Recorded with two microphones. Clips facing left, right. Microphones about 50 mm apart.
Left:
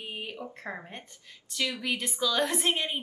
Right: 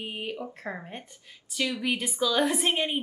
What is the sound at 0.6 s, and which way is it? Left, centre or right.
Speech, centre.